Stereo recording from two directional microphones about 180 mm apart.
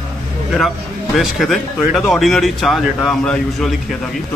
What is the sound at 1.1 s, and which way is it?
Speech, centre (ahead or behind).